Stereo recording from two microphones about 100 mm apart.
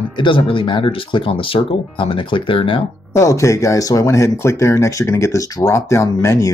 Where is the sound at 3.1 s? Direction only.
30° left (ahead or behind).